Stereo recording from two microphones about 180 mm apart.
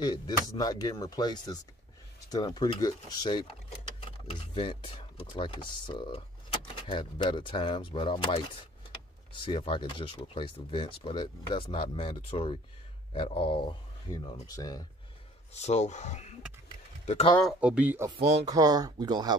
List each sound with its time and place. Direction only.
0.0 s speech: 20° left (ahead or behind)
15.5 s speech: 40° left (ahead or behind)
17.4 s speech: 5° right (ahead or behind)
18.5 s speech: 20° right (ahead or behind)